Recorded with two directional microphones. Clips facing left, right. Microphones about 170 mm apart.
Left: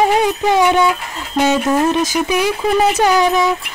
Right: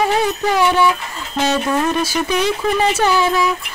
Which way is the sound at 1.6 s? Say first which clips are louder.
Left 3 dB; 25° left (ahead or behind).